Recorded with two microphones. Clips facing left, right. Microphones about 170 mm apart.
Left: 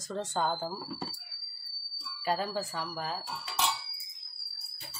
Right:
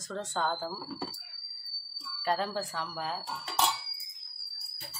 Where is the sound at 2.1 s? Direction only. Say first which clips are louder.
Even; 5° left (ahead or behind).